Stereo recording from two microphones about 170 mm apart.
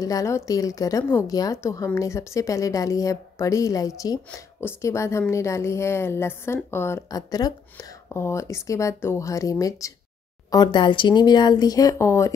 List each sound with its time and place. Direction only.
0.0 s a woman's voice: 20° left (ahead or behind)